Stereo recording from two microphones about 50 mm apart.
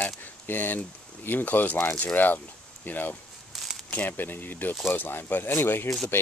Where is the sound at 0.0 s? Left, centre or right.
Left.